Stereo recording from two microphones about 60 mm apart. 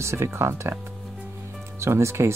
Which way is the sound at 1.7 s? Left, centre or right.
Right.